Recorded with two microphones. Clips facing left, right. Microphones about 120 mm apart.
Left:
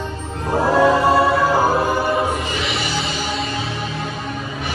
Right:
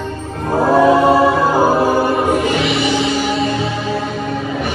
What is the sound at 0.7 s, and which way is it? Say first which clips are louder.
Choir: right 4 dB; 5° right (ahead or behind).